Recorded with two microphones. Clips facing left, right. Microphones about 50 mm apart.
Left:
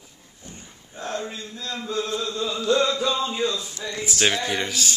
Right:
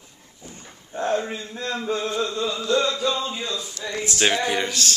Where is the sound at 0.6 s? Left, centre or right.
Right.